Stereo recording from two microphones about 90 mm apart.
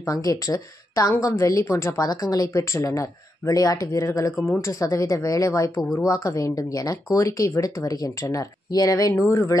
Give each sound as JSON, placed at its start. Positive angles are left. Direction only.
{"t": 0.0, "sound": "speech", "side_deg": 40}